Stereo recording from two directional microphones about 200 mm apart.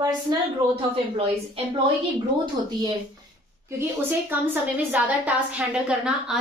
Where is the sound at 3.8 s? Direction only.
10° right (ahead or behind).